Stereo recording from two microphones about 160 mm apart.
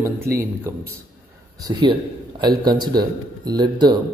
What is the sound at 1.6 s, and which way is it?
A man's voice, 30° right (ahead or behind).